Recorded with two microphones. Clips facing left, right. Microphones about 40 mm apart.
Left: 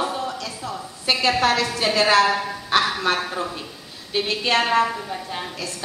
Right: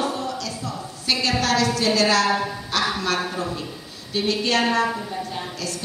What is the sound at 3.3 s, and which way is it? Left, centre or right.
Speech, centre.